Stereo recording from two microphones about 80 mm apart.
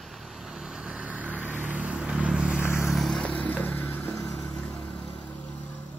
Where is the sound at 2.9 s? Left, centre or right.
Centre.